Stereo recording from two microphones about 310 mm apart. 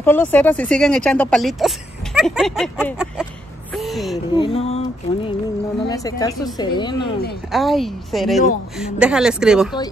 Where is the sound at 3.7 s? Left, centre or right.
Centre.